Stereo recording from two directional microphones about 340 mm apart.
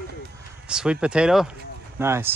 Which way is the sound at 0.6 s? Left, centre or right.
Centre.